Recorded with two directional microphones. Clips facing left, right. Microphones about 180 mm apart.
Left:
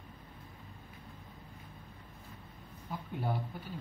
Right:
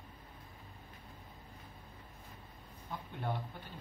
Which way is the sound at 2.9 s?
5° left (ahead or behind).